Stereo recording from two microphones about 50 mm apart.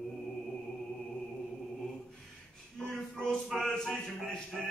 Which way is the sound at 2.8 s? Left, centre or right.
Centre.